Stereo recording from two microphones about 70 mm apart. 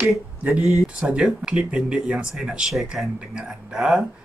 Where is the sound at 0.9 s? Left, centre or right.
Centre.